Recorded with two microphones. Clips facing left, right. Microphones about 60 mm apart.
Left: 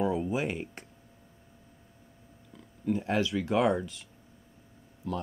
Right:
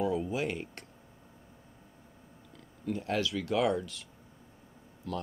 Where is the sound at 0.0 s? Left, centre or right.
Centre.